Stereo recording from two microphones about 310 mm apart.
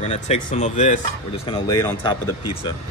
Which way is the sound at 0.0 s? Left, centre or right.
Left.